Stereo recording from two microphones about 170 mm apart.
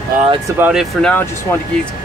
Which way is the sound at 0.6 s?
5° right (ahead or behind).